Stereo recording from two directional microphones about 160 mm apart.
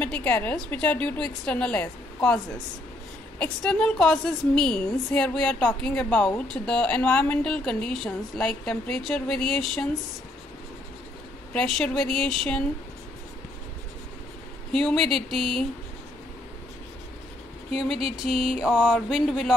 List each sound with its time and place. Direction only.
0.0 s a woman's voice: 10° left (ahead or behind)
3.3 s a woman's voice: 5° left (ahead or behind)
11.5 s a woman's voice: 5° left (ahead or behind)
14.7 s a woman's voice: 5° left (ahead or behind)
17.7 s a woman's voice: centre (ahead or behind)